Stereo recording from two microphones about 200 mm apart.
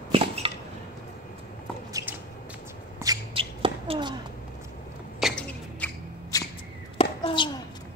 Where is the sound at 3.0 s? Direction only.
20° right (ahead or behind).